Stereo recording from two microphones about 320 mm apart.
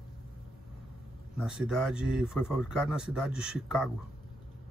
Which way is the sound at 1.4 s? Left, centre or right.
Centre.